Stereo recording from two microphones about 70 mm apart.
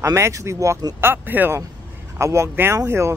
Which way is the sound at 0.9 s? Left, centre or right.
Right.